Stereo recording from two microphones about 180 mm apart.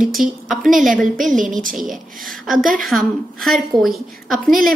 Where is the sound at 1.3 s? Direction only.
45° right (ahead or behind).